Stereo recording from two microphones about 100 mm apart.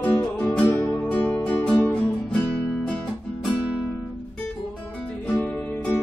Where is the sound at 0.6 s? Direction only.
25° left (ahead or behind).